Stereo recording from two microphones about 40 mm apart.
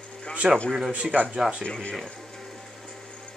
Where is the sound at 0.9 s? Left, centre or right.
Right.